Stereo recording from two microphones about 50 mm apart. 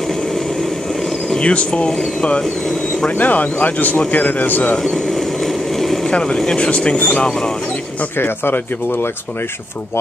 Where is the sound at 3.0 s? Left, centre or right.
Left.